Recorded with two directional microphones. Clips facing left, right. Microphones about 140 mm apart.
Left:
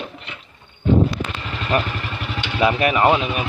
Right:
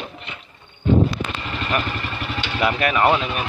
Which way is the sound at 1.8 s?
Centre (ahead or behind).